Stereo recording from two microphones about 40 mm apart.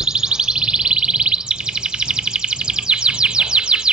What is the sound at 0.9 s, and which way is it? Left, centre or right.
Music, right.